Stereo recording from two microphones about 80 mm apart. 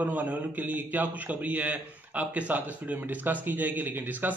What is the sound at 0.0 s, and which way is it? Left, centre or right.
A man's voice, centre.